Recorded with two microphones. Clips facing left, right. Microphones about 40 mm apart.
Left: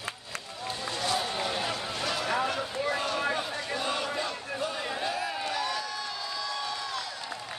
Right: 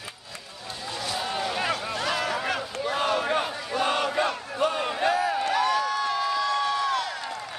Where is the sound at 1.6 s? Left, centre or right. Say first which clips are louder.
Right 4 dB; right.